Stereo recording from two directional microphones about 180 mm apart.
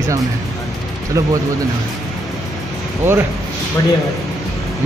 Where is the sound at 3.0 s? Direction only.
15° right (ahead or behind).